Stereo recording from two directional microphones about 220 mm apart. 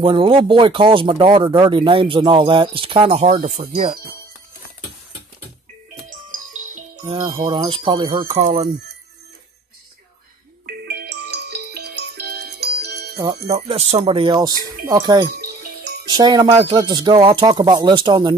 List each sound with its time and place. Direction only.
0.0 s speech: 25° right (ahead or behind)
7.2 s speech: 20° right (ahead or behind)
10.7 s music: 45° right (ahead or behind)
13.1 s speech: 20° right (ahead or behind)
15.3 s music: 50° right (ahead or behind)
16.1 s speech: 20° right (ahead or behind)